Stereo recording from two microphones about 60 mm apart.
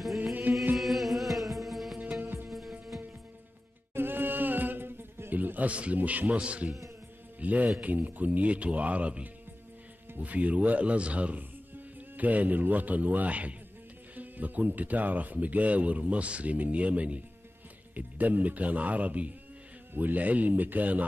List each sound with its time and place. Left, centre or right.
0.2 s music: right
0.7 s music: centre
2.0 s music: right
2.4 s music: centre
3.9 s music: right
7.3 s a man's voice: right